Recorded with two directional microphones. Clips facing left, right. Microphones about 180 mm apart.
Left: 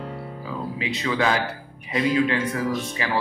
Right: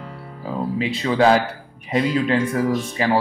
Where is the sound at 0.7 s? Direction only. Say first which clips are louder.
Right 6 dB; 35° right (ahead or behind).